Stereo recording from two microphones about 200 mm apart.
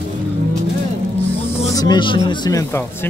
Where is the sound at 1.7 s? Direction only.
20° left (ahead or behind).